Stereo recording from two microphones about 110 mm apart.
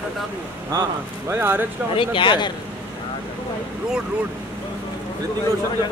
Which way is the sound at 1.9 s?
50° left (ahead or behind).